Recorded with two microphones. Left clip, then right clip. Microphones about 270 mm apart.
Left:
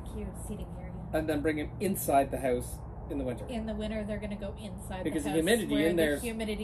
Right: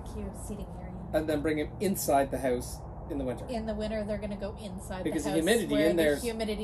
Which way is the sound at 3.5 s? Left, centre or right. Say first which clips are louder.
Right 3 dB; centre.